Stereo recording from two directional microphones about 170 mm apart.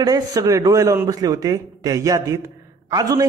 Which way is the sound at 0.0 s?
20° right (ahead or behind).